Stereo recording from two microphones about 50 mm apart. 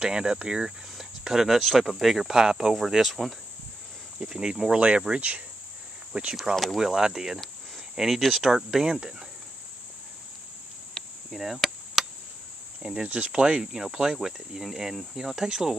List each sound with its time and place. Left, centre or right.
0.0 s cricket: centre
1.6 s speech: centre
4.2 s cricket: centre
4.7 s speech: right
6.5 s cricket: centre
7.9 s speech: centre
8.2 s speech: centre
8.6 s cricket: centre
11.2 s cricket: centre
12.8 s cricket: right